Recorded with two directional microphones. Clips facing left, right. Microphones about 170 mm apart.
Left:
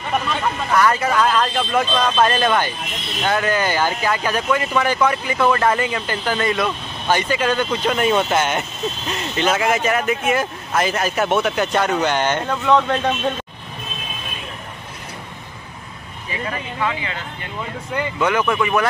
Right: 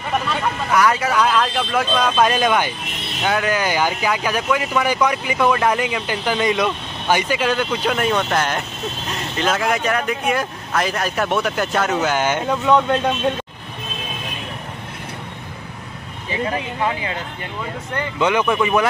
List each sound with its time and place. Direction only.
0.7 s speech: 5° right (ahead or behind)
16.3 s speech: 30° right (ahead or behind)
18.2 s speech: 15° right (ahead or behind)